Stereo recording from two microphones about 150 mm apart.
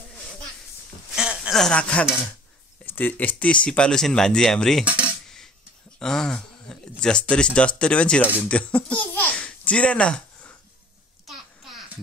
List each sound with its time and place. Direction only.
1.1 s a sound: 5° right (ahead or behind)
1.6 s speech: 5° left (ahead or behind)
5.9 s speech: 5° left (ahead or behind)
11.2 s babbling: centre (ahead or behind)